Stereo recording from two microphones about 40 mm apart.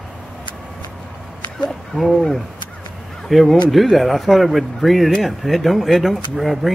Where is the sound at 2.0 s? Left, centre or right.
Centre.